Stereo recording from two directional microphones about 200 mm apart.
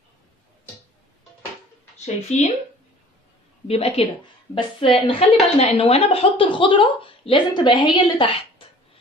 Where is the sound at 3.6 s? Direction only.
30° left (ahead or behind).